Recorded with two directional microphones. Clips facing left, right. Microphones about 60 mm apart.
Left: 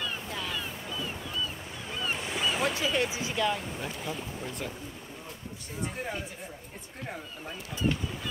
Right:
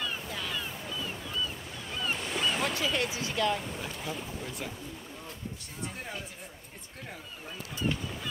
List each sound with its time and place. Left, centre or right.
0.0 s a sound: centre
2.0 s waves: centre
2.7 s speech: centre
3.3 s speech: centre
5.8 s speech: centre